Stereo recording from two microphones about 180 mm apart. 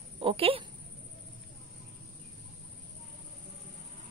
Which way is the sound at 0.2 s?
30° right (ahead or behind).